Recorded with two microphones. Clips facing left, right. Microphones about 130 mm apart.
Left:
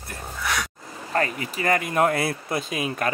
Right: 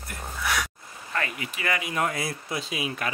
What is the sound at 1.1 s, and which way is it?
Speech, 40° left (ahead or behind).